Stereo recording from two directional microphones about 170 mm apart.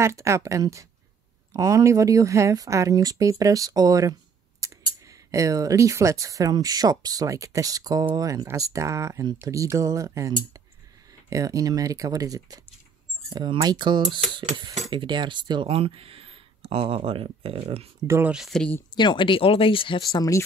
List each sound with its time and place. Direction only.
0.0 s a woman's voice: 15° right (ahead or behind); by 17.8 s 35° right (ahead or behind)
18.0 s a woman's voice: 15° right (ahead or behind)
18.3 s speech: centre (ahead or behind)
18.9 s speech: 25° left (ahead or behind)